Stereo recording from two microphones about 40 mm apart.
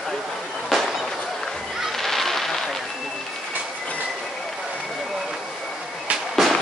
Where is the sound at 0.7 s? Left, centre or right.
Centre.